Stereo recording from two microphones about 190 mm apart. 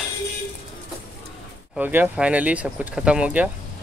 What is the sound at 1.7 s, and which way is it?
Speech, 10° right (ahead or behind).